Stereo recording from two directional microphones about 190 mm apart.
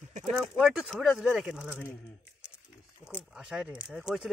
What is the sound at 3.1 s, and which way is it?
Speech, centre (ahead or behind).